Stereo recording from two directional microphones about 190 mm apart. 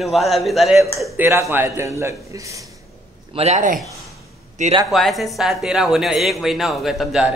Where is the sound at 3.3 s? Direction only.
35° right (ahead or behind).